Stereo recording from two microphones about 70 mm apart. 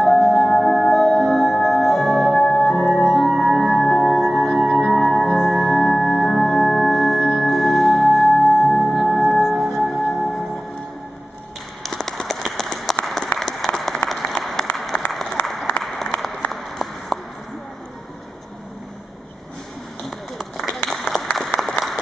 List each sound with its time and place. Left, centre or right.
0.0 s music: centre
7.3 s singing bowl: centre
11.8 s a sound: centre
13.0 s applause: centre
15.0 s applause: left
15.8 s applause: centre
20.1 s a sound: centre
20.8 s applause: centre